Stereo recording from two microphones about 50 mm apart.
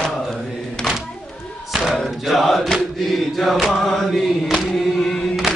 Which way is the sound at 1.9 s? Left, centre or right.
Centre.